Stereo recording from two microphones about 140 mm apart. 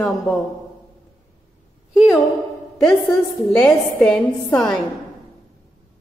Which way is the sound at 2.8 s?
Centre (ahead or behind).